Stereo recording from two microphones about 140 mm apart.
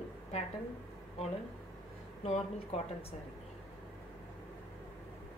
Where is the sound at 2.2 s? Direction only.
45° left (ahead or behind).